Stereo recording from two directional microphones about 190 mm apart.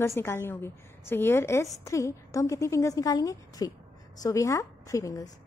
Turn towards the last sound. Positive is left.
turn(degrees=15)  # may be behind; listen again after turning